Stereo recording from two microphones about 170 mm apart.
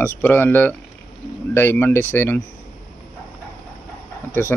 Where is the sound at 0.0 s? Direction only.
10° left (ahead or behind).